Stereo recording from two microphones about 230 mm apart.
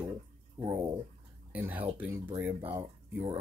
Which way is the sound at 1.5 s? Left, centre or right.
Centre.